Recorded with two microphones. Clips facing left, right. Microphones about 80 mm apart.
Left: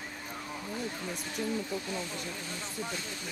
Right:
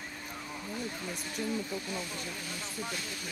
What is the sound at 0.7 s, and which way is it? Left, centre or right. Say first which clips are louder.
Speech: left 1 dB; centre.